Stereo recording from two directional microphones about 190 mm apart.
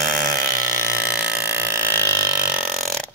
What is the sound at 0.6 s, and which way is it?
Ratchet, 15° right (ahead or behind).